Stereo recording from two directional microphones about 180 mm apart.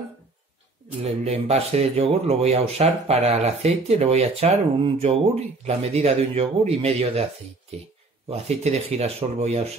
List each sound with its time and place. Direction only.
1.0 s speech: 35° right (ahead or behind)
8.3 s speech: 35° right (ahead or behind)